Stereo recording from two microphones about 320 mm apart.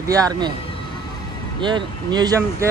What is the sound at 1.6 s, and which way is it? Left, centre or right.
Speech, centre.